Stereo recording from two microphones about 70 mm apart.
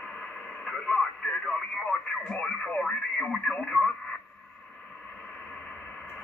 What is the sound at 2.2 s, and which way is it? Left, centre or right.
Speech, centre.